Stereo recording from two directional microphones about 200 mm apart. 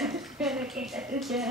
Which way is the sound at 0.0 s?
Centre (ahead or behind).